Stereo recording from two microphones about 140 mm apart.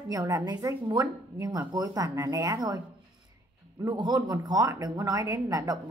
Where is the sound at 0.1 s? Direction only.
25° right (ahead or behind).